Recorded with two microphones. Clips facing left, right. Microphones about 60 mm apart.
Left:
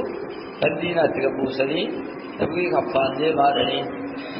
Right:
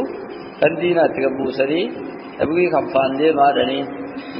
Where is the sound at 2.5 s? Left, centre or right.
Right.